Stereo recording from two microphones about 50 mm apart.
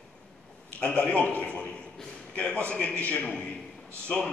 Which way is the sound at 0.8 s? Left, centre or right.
Left.